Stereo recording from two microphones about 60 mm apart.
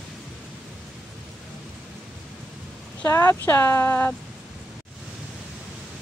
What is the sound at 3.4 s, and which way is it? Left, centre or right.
Speech, left.